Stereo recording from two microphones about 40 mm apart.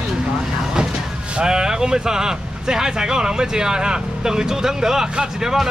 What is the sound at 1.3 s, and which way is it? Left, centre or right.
Speech, centre.